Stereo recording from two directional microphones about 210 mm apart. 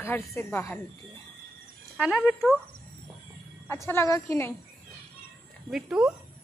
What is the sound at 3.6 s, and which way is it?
Speech, 10° left (ahead or behind).